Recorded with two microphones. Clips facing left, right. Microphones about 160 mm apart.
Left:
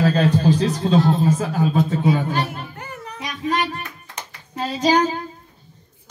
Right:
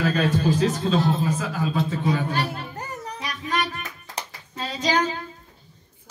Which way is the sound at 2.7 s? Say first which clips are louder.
Right 1 dB; 40° right (ahead or behind).